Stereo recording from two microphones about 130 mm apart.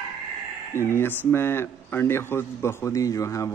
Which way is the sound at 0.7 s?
20° left (ahead or behind).